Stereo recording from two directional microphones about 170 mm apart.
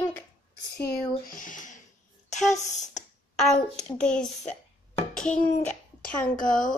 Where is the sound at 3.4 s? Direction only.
5° left (ahead or behind).